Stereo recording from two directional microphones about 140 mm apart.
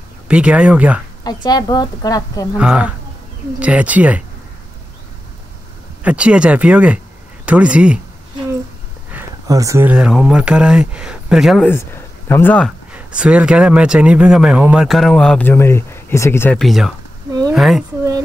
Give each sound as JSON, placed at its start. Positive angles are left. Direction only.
{"t": 0.3, "sound": "speech", "side_deg": -10}
{"t": 1.2, "sound": "a woman's voice", "side_deg": 30}
{"t": 2.5, "sound": "speech", "side_deg": -5}
{"t": 6.0, "sound": "speech", "side_deg": -10}
{"t": 9.5, "sound": "speech", "side_deg": -25}
{"t": 9.8, "sound": "speech", "side_deg": -5}
{"t": 11.6, "sound": "speech", "side_deg": 15}
{"t": 12.9, "sound": "speech", "side_deg": -10}
{"t": 16.5, "sound": "speech", "side_deg": 0}